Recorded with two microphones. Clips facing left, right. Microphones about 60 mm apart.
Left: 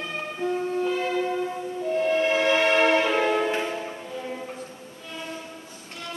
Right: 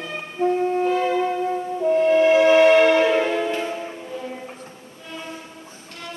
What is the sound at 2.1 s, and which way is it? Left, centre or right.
Music, right.